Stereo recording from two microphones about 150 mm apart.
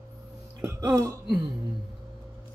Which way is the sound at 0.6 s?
20° right (ahead or behind).